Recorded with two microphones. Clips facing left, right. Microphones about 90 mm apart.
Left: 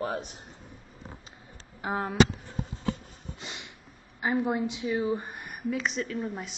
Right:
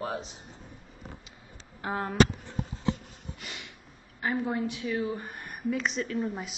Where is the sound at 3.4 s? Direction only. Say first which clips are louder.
Left 2 dB; 20° left (ahead or behind).